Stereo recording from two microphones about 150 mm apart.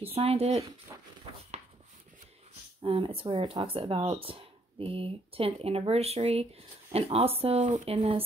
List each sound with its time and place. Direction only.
0.0 s speech: 40° right (ahead or behind)
0.9 s a sound: 20° right (ahead or behind)
2.8 s speech: 35° right (ahead or behind)